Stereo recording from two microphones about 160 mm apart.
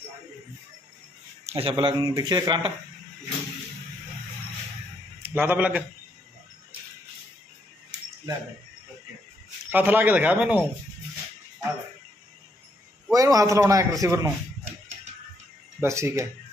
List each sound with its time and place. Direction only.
1.4 s a man's voice: 35° right (ahead or behind)
5.2 s a man's voice: 10° right (ahead or behind)
9.7 s speech: 10° right (ahead or behind)
13.1 s a man's voice: 20° right (ahead or behind)
15.8 s speech: 15° right (ahead or behind)